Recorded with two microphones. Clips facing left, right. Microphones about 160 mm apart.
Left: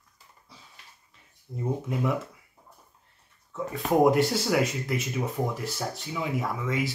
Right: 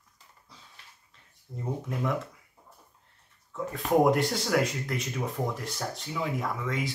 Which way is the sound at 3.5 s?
Centre (ahead or behind).